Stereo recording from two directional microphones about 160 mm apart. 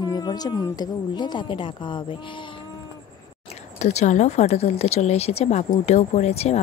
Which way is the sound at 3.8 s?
45° left (ahead or behind).